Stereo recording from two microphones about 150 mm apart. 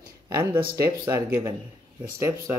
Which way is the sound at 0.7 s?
20° right (ahead or behind).